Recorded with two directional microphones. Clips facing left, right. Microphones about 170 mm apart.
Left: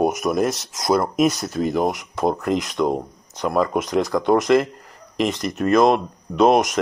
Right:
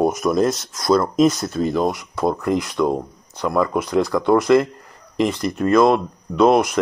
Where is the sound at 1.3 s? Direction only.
15° left (ahead or behind).